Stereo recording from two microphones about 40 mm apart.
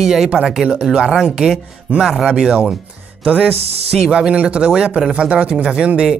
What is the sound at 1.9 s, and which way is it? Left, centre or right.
Speech, right.